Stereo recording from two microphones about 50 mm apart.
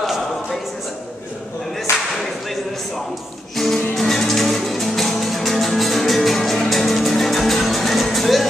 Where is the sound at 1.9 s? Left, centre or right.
Left.